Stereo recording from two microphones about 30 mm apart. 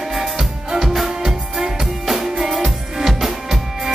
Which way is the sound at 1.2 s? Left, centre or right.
Centre.